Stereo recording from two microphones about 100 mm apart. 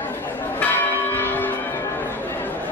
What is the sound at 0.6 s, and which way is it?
Church bell, 20° left (ahead or behind).